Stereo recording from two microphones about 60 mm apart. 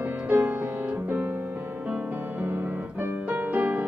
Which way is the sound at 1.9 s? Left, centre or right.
Right.